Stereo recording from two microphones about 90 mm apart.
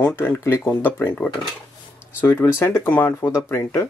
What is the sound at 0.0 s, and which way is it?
Speech, 25° left (ahead or behind).